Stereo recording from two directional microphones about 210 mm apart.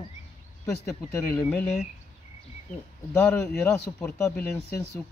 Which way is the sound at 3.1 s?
15° left (ahead or behind).